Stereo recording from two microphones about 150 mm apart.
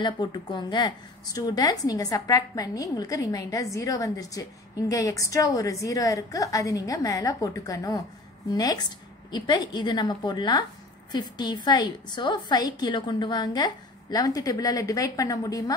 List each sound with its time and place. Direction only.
0.0 s a woman's voice: 30° left (ahead or behind)